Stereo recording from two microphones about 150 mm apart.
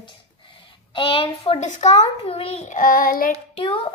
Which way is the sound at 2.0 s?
40° left (ahead or behind).